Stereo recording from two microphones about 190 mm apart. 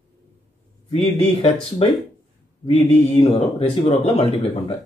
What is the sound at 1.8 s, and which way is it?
A man's voice, 30° left (ahead or behind).